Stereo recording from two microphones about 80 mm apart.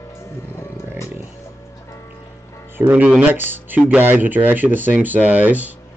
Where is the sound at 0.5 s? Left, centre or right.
Left.